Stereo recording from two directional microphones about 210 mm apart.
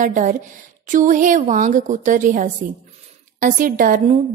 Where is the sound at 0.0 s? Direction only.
35° right (ahead or behind).